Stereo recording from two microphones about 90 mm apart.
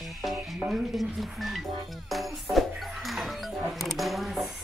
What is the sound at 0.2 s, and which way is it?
Speech, 5° right (ahead or behind).